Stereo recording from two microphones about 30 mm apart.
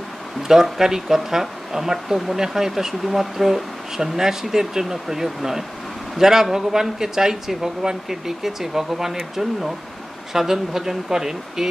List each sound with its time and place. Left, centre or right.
0.5 s speech: centre